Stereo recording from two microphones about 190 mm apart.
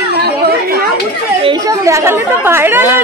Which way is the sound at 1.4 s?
20° right (ahead or behind).